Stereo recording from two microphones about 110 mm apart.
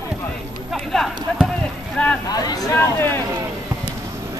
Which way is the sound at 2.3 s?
35° left (ahead or behind).